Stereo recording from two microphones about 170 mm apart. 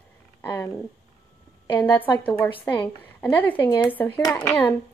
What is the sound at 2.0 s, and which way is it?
A woman's voice, 10° left (ahead or behind).